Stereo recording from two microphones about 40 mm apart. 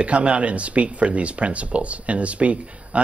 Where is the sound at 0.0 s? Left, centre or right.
Right.